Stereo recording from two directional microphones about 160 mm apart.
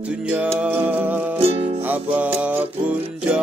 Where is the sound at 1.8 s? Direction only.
10° right (ahead or behind).